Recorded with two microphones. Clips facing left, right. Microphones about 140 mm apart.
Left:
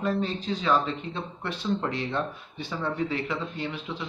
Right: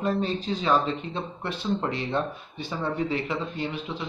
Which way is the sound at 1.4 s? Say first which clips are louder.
Even; 20° right (ahead or behind).